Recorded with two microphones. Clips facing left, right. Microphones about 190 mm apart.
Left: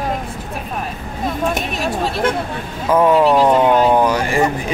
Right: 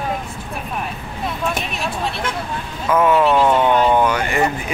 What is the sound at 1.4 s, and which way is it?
Speech, 45° left (ahead or behind).